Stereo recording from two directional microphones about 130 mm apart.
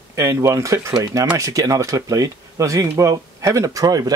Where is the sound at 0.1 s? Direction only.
25° right (ahead or behind).